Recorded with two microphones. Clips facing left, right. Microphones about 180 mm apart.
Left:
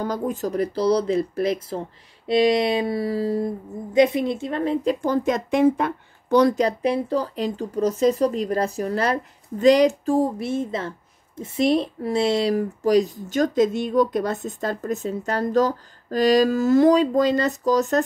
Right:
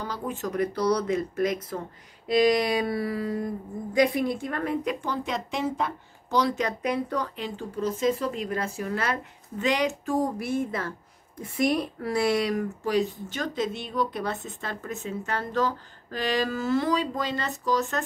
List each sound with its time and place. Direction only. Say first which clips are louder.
0.0 s speech: left 7 dB; 40° left (ahead or behind); by 4.9 s 25° left (ahead or behind)
5.0 s speech: left 9 dB; 45° left (ahead or behind)
6.5 s speech: left 6 dB; 35° left (ahead or behind)